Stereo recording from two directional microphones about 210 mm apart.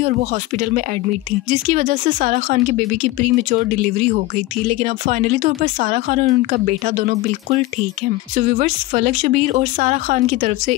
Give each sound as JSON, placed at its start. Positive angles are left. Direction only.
{"t": 0.0, "sound": "speech", "side_deg": -40}